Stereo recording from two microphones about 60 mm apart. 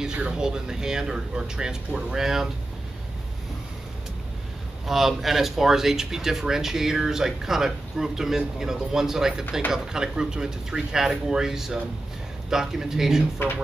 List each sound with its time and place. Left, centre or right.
0.0 s speech: centre
4.8 s speech: centre
13.4 s music: left